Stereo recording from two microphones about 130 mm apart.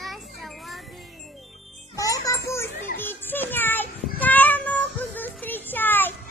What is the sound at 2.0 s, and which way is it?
Speech, 25° left (ahead or behind).